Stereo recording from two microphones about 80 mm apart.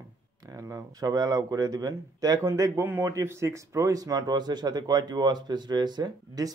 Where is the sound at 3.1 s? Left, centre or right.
Right.